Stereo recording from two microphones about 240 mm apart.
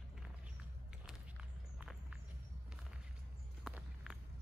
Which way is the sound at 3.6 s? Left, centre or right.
Centre.